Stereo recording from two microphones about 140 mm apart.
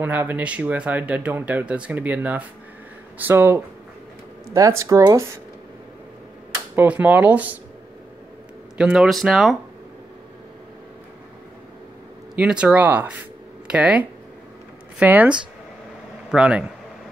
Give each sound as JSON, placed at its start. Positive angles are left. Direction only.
{"t": 0.0, "sound": "speech", "side_deg": -15}
{"t": 6.7, "sound": "speech", "side_deg": -10}
{"t": 8.7, "sound": "speech", "side_deg": -5}
{"t": 12.4, "sound": "speech", "side_deg": -10}